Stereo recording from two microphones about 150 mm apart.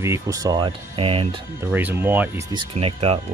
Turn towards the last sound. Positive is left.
turn(degrees=-40)  # may be behind; listen again after turning